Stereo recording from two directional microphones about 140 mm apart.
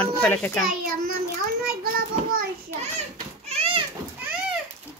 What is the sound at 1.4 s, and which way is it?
Child singing, 90° right.